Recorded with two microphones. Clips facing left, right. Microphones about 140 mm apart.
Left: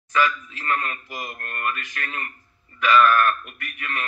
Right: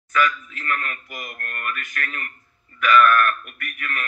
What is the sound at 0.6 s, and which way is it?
A man's voice, 30° left (ahead or behind).